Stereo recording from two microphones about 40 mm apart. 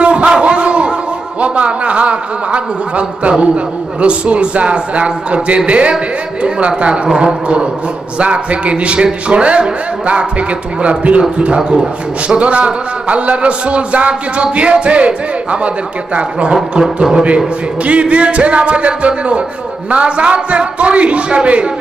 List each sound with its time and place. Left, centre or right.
0.0 s a sound: right
1.4 s a man's voice: right
8.2 s a man's voice: right
12.4 s a man's voice: right
16.8 s speech: centre
17.8 s a man's voice: right